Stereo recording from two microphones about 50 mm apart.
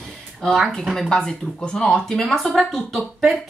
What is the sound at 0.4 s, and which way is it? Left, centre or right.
A woman's voice, centre.